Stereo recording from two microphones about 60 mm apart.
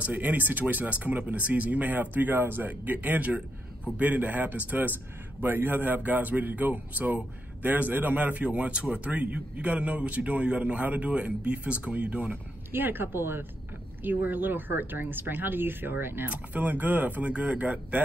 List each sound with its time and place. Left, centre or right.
0.0 s a man's voice: right
12.7 s speech: right
16.3 s a man's voice: right